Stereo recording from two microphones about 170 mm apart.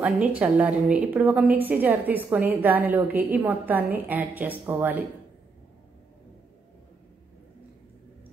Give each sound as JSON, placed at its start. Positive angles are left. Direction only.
{"t": 0.0, "sound": "a woman's voice", "side_deg": -10}